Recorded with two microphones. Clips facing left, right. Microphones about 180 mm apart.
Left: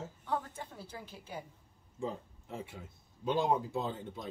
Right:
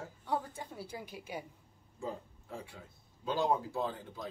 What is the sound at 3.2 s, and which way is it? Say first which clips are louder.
Speech: left 1 dB; 20° left (ahead or behind).